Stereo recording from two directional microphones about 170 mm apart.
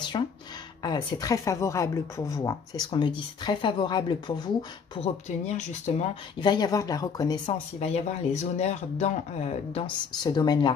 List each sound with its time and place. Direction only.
0.1 s a sound: 30° left (ahead or behind)
0.8 s speech: 25° left (ahead or behind)
5.0 s speech: 40° left (ahead or behind)
6.4 s speech: 25° left (ahead or behind)
7.8 s speech: 40° left (ahead or behind)
10.2 s speech: 25° left (ahead or behind)